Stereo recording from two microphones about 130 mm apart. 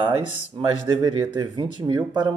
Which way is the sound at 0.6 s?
35° right (ahead or behind).